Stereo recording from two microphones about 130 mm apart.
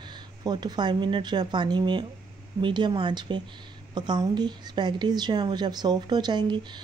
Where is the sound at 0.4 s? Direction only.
30° right (ahead or behind).